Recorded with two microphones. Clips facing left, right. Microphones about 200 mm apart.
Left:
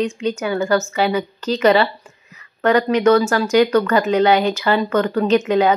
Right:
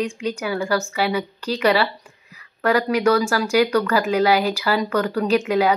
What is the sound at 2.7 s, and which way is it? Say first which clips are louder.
Speech: left 4 dB; 5° right (ahead or behind).